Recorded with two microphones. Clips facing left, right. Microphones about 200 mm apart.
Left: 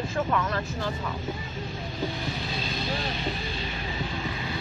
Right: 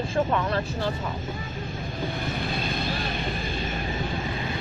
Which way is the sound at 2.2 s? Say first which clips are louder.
Right 3 dB; 55° right (ahead or behind).